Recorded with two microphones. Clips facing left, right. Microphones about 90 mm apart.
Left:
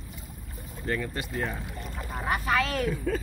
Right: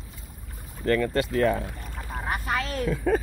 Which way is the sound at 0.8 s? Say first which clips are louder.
Right 8 dB; 90° right.